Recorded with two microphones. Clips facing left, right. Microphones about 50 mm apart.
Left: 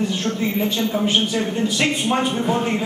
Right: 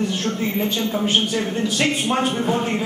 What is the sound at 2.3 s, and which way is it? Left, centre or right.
Speech, centre.